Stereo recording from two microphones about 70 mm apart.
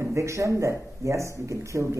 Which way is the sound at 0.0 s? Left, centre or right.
Right.